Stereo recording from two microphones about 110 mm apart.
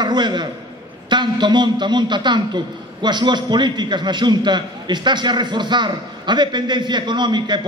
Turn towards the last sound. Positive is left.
turn(degrees=-40)  # may be behind; listen again after turning